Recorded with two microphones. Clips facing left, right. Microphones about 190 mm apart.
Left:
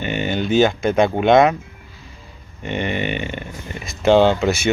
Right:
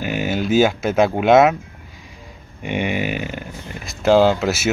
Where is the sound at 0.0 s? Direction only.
5° right (ahead or behind).